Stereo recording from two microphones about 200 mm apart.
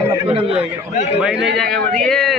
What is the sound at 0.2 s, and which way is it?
Speech, 30° right (ahead or behind).